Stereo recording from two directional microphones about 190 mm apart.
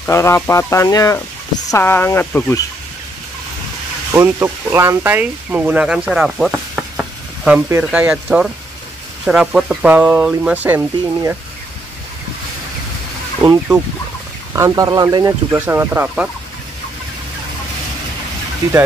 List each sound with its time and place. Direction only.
0.0 s speech: 15° left (ahead or behind)
4.1 s speech: 15° right (ahead or behind)
13.4 s speech: 15° right (ahead or behind)